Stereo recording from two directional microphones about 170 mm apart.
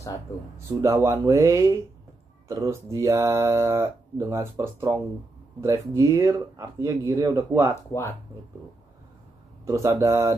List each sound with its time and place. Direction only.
0.7 s speech: 15° right (ahead or behind)
7.9 s speech: 15° left (ahead or behind)
9.7 s speech: 20° right (ahead or behind)